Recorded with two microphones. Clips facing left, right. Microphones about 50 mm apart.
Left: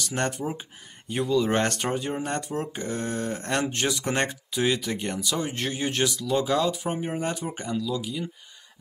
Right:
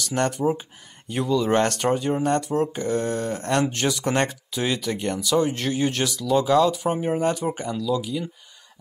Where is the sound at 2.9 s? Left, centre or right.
Centre.